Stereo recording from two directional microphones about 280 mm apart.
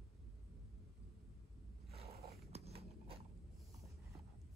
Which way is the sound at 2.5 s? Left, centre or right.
Right.